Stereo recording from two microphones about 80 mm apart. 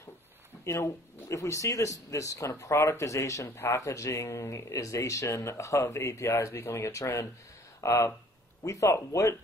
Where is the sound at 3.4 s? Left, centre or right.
Left.